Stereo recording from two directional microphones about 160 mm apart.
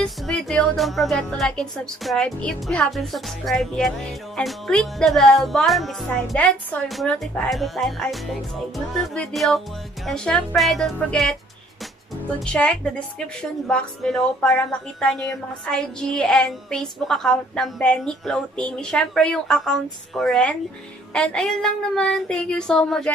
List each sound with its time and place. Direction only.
0.0 s speech: 5° left (ahead or behind)
12.4 s speech: 5° left (ahead or behind)